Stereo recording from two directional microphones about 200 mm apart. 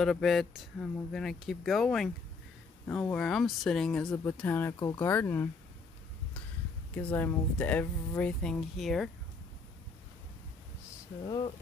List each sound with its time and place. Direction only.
0.0 s speech: centre (ahead or behind)
7.0 s speech: 10° left (ahead or behind)
11.2 s speech: 20° left (ahead or behind)